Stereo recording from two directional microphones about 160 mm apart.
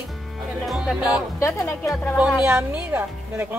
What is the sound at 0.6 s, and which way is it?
Speech, centre (ahead or behind).